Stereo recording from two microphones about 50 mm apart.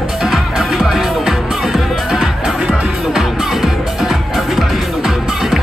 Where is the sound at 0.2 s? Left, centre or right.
Centre.